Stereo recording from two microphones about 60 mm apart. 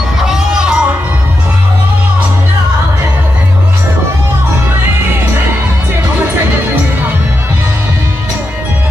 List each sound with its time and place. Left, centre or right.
0.2 s music: centre